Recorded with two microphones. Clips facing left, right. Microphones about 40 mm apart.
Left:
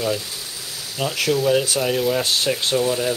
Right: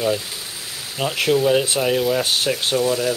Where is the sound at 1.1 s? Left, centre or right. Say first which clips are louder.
Right 2 dB; centre.